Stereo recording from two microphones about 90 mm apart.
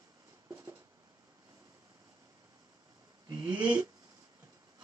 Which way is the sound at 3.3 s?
55° right (ahead or behind).